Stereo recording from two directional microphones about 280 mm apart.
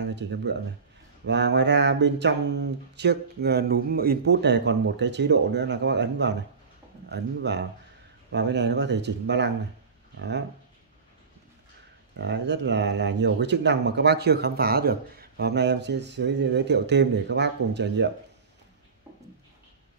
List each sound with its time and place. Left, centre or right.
0.0 s speech: right
12.2 s speech: right